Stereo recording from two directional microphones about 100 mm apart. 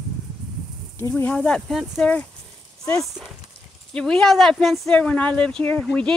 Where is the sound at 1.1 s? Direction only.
15° left (ahead or behind).